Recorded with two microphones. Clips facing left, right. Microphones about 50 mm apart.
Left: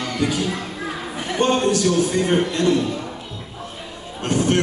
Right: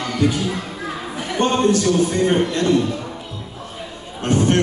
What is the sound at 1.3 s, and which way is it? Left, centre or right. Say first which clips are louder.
Speech: even; centre.